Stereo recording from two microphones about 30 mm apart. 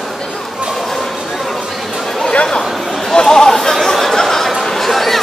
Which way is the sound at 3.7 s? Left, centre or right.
Centre.